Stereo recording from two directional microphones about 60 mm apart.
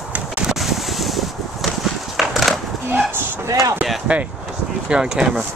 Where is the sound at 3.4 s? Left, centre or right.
Right.